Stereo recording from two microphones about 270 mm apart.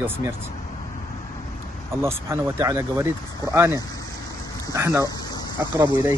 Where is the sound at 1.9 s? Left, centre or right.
Centre.